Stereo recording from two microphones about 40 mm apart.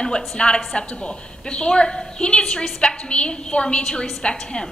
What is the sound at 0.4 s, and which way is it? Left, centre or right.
A woman's voice, left.